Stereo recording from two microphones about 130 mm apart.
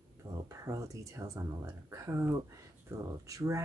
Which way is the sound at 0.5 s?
25° right (ahead or behind).